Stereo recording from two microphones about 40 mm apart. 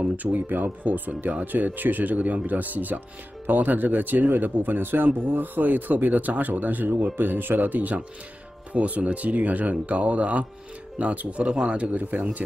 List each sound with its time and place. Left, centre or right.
0.2 s a man's voice: right
12.0 s speech: right